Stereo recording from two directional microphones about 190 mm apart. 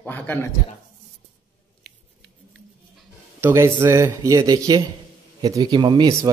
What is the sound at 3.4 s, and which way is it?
Speech, 10° right (ahead or behind).